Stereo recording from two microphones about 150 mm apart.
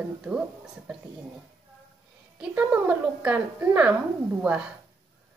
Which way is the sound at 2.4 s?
10° right (ahead or behind).